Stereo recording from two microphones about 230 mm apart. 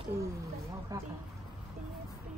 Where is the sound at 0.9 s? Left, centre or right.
Centre.